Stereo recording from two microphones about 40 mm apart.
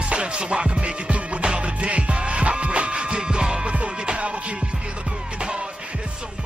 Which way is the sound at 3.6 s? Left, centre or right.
Right.